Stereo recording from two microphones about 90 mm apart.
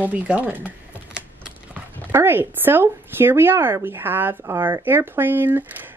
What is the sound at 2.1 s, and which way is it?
Speech, 30° right (ahead or behind).